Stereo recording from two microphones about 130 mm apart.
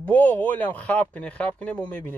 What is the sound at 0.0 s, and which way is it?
A man's voice, 10° left (ahead or behind).